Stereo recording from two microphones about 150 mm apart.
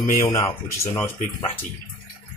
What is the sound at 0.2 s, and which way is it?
A man's voice, 20° left (ahead or behind).